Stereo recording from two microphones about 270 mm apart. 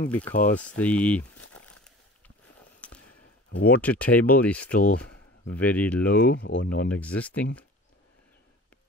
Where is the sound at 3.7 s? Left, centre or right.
Centre.